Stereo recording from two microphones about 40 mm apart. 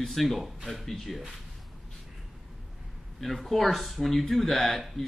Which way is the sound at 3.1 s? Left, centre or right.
Centre.